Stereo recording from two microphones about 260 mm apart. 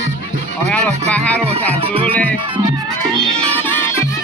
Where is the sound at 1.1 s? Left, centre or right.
Centre.